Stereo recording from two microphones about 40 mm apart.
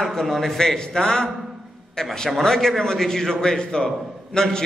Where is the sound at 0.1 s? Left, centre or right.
Centre.